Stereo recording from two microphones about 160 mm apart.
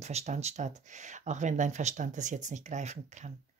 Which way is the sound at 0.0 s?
45° right (ahead or behind).